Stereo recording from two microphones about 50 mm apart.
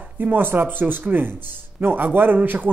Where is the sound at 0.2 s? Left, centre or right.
Right.